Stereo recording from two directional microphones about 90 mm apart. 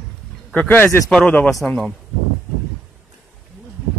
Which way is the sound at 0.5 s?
20° left (ahead or behind).